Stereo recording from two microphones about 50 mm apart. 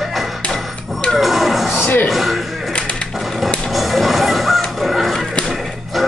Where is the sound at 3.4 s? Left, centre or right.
Centre.